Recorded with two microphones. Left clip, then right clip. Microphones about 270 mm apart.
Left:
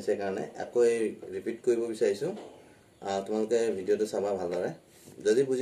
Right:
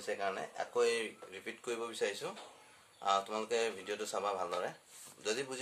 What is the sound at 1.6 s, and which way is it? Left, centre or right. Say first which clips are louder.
Speech: left 10 dB; right.